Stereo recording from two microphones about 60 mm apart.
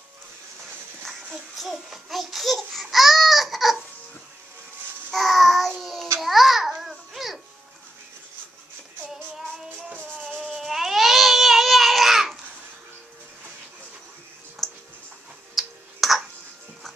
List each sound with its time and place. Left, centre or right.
1.0 s speech: centre
5.1 s child singing: centre
6.1 s babbling: centre
10.4 s baby cry: centre
14.6 s music: centre
15.5 s clicking: centre